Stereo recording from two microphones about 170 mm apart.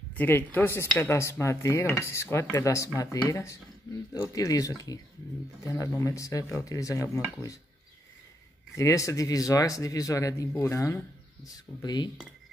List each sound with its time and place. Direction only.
0.1 s speech: 10° left (ahead or behind)
8.7 s speech: 20° left (ahead or behind)
11.5 s speech: 25° left (ahead or behind)